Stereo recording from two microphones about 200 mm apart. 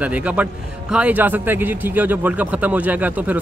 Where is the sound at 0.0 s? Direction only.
5° right (ahead or behind).